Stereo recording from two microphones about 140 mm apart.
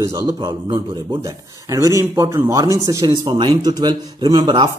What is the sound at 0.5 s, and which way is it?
A man's voice, 35° right (ahead or behind).